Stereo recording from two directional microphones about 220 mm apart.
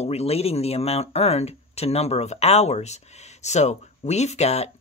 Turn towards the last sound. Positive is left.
turn(degrees=30)  # may be behind; listen again after turning